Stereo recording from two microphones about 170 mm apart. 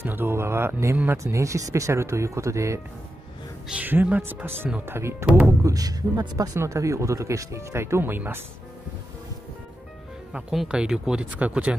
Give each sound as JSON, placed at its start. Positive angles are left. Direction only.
{"t": 0.0, "sound": "speech", "side_deg": -15}
{"t": 10.3, "sound": "speech", "side_deg": -5}